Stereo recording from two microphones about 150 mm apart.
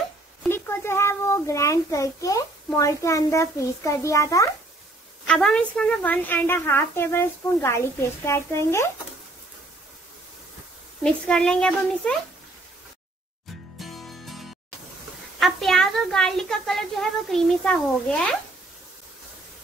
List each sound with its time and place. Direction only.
0.5 s a child's voice: 15° left (ahead or behind)
5.2 s a woman's voice: 5° left (ahead or behind)
11.1 s a woman's voice: 5° left (ahead or behind)
13.7 s music: centre (ahead or behind)
15.3 s a woman's voice: centre (ahead or behind)